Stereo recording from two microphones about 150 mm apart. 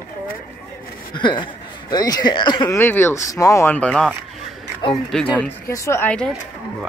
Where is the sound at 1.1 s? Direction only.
30° left (ahead or behind).